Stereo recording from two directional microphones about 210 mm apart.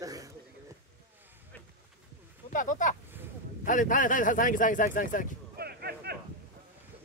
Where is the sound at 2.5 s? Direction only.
35° left (ahead or behind).